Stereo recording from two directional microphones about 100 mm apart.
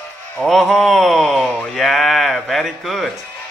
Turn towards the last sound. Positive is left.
turn(degrees=0)  # may be behind; listen again after turning